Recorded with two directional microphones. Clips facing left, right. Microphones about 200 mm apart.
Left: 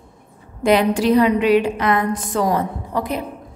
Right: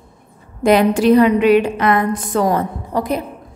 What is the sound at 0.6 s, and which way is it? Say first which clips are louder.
A woman's voice: right 3 dB; 50° right (ahead or behind).